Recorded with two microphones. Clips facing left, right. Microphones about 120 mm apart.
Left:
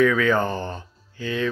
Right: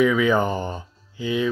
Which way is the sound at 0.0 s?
15° right (ahead or behind).